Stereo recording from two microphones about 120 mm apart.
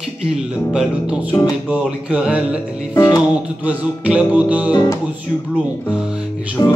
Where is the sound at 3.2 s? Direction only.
10° right (ahead or behind).